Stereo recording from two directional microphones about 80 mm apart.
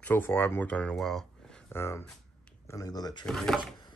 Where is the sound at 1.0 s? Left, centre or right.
Centre.